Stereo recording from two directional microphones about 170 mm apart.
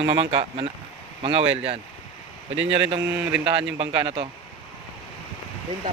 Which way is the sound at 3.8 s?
35° right (ahead or behind).